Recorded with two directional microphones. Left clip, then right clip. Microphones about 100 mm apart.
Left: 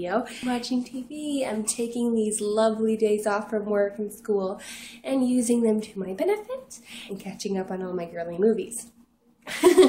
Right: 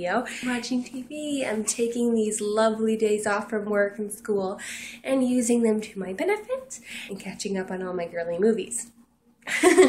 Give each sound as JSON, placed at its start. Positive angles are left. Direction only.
{"t": 0.0, "sound": "speech", "side_deg": 20}
{"t": 1.6, "sound": "speech", "side_deg": 20}
{"t": 9.5, "sound": "speech", "side_deg": 30}